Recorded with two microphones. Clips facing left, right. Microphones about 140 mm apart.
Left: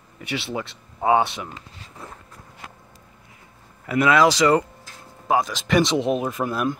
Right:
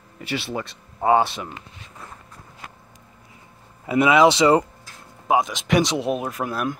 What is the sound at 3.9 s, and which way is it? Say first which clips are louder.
Speech: right 2 dB; 20° right (ahead or behind).